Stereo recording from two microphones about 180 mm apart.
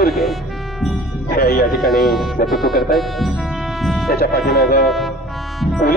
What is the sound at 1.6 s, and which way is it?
Speech, centre (ahead or behind).